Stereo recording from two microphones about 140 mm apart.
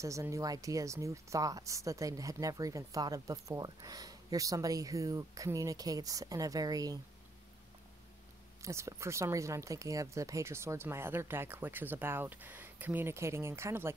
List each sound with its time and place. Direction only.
0.0 s speech: 20° right (ahead or behind)
8.6 s speech: 20° right (ahead or behind)